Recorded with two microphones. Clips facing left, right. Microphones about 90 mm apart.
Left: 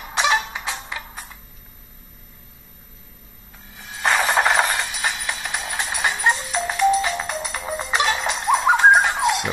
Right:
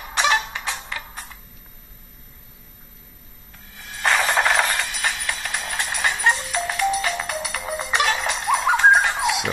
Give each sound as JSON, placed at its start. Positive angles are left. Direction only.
{"t": 0.0, "sound": "music", "side_deg": 5}
{"t": 3.7, "sound": "music", "side_deg": 20}
{"t": 4.8, "sound": "music", "side_deg": 10}